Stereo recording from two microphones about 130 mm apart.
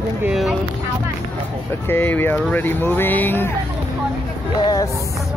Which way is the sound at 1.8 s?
15° left (ahead or behind).